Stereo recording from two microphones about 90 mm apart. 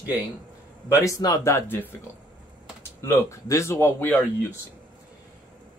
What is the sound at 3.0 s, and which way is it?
Speech, 30° left (ahead or behind).